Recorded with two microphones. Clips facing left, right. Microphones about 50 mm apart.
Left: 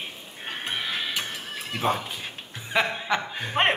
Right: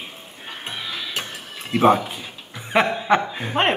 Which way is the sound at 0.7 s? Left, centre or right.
Left.